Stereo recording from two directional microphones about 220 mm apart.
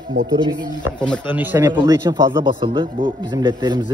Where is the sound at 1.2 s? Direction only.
10° right (ahead or behind).